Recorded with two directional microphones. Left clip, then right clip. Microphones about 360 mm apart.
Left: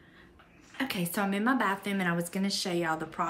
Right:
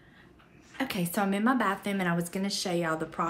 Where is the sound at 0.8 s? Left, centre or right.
Centre.